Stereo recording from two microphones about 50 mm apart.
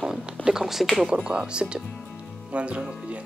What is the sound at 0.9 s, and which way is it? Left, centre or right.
Speech, centre.